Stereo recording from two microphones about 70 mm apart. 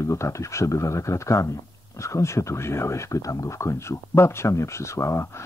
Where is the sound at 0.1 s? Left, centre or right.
Left.